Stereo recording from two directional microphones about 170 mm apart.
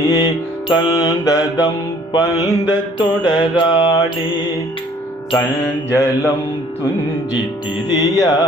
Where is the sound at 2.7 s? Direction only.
25° left (ahead or behind).